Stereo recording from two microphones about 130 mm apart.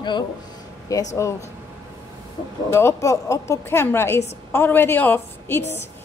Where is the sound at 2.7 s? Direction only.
20° left (ahead or behind).